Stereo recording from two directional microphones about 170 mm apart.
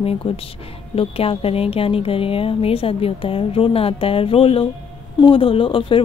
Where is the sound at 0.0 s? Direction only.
35° left (ahead or behind).